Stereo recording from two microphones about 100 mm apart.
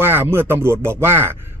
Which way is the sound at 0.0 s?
20° right (ahead or behind).